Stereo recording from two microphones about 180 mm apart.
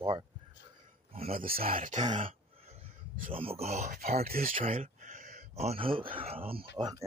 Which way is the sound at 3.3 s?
30° right (ahead or behind).